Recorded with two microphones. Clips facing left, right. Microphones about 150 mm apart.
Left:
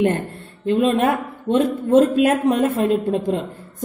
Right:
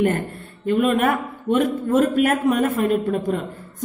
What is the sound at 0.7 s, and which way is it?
A woman's voice, 30° left (ahead or behind).